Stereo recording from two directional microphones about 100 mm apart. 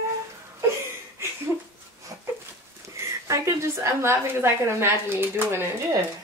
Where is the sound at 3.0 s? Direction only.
30° right (ahead or behind).